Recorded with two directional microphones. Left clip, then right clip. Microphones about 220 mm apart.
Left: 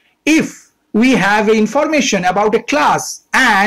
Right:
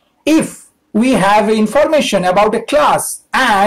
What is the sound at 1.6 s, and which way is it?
Speech, 20° left (ahead or behind).